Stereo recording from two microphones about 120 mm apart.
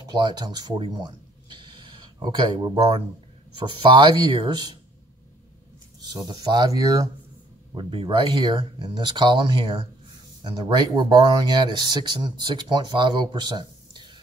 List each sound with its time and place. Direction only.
0.0 s speech: 35° right (ahead or behind)
6.0 s speech: 35° right (ahead or behind)
7.7 s speech: 45° right (ahead or behind)